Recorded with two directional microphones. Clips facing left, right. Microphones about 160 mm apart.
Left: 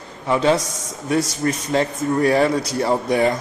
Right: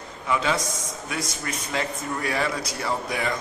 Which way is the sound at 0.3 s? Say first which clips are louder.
Left 7 dB; 35° left (ahead or behind).